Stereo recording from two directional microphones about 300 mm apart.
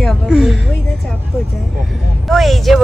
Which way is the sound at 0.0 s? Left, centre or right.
Centre.